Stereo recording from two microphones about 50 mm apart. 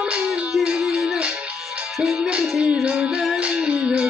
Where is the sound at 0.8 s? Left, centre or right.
Centre.